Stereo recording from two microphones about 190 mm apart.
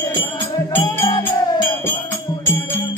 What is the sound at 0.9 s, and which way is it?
Music, 20° left (ahead or behind).